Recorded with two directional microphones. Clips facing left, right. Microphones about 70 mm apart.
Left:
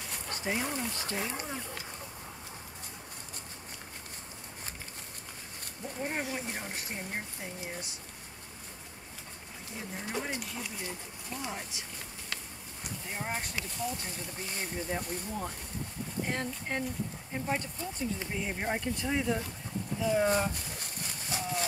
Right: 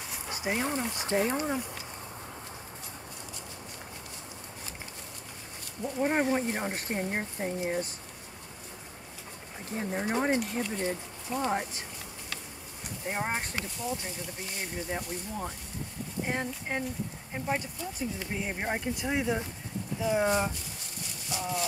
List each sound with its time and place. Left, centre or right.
0.1 s speech: centre; by 1.4 s right
6.0 s speech: right
9.8 s speech: right
13.0 s speech: right
14.6 s speech: centre